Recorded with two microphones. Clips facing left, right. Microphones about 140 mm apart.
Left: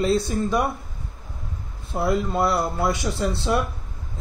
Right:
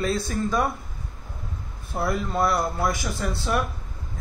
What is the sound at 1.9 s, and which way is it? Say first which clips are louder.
Speech: left 4 dB; 20° left (ahead or behind).